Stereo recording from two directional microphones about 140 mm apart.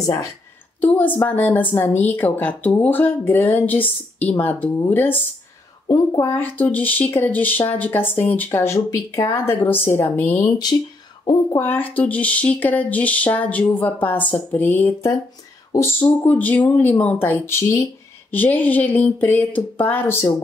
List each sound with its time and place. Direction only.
0.0 s a woman's voice: 25° left (ahead or behind)
0.7 s speech: 10° left (ahead or behind)
5.9 s speech: 25° left (ahead or behind)
11.5 s speech: 15° left (ahead or behind)